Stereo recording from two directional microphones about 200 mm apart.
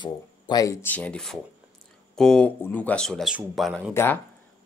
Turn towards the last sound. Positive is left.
turn(degrees=10)  # may be behind; listen again after turning